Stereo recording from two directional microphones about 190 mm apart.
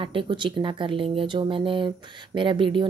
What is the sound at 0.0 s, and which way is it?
A woman's voice, 25° right (ahead or behind).